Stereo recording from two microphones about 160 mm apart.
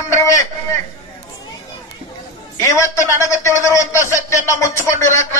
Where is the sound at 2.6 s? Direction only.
20° left (ahead or behind).